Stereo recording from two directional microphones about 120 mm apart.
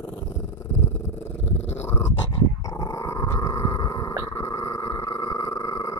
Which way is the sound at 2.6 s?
30° left (ahead or behind).